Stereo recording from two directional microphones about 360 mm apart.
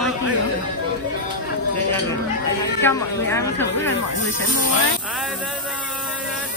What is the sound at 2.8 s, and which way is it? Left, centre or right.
Speech, centre.